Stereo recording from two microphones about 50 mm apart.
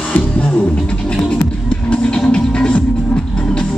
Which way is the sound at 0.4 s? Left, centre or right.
Left.